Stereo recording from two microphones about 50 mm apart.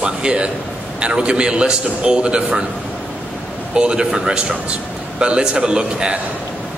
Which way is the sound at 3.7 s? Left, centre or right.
Centre.